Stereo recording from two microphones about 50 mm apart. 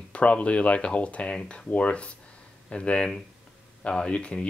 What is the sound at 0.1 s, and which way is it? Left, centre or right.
Speech, left.